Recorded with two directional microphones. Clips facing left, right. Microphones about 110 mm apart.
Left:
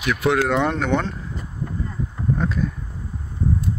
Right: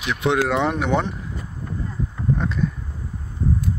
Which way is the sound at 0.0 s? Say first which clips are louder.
Left 1 dB; 25° right (ahead or behind).